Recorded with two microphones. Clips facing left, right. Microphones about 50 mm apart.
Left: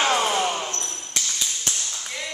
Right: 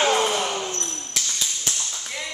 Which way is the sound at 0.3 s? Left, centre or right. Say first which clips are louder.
Left 1 dB; centre.